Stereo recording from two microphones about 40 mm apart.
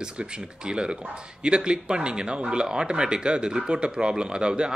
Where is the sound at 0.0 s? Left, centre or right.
Right.